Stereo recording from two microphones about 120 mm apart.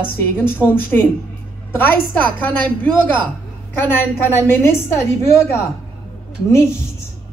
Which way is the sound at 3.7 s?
20° left (ahead or behind).